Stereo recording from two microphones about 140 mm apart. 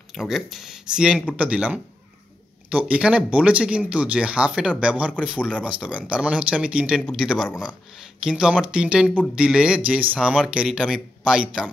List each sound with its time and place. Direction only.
0.1 s speech: centre (ahead or behind)
10.1 s speech: centre (ahead or behind)